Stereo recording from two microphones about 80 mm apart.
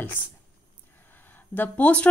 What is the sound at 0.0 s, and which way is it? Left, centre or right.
Speech, left.